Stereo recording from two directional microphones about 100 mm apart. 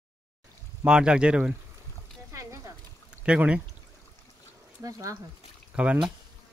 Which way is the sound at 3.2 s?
15° right (ahead or behind).